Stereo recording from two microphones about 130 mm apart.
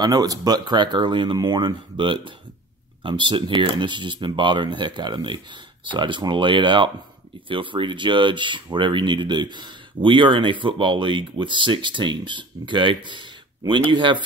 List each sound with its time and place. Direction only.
0.0 s speech: 30° right (ahead or behind)